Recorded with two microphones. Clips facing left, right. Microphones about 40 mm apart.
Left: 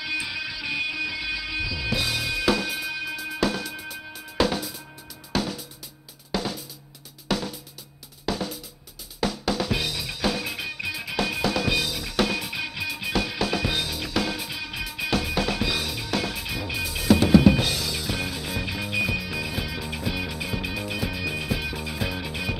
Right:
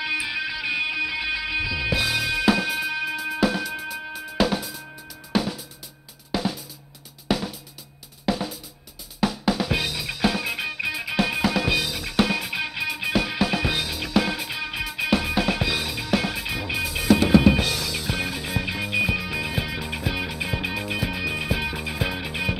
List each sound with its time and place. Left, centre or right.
0.2 s music: centre
6.3 s drum: centre
7.3 s music: centre
8.3 s drum: centre
10.1 s music: centre